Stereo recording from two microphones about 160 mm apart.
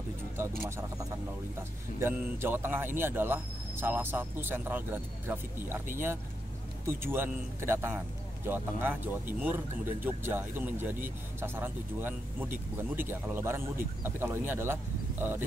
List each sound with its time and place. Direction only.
0.6 s speech: 15° right (ahead or behind)
2.0 s speech: 15° right (ahead or behind)
6.9 s speech: 15° right (ahead or behind)